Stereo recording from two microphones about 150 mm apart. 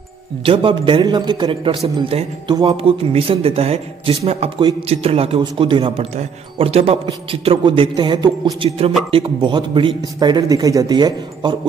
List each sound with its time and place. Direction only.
0.5 s speech: 35° right (ahead or behind)
8.6 s speech: 40° right (ahead or behind)
9.1 s speech: 30° right (ahead or behind)